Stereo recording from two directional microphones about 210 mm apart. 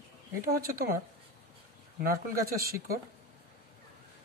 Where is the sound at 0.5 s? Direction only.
45° right (ahead or behind).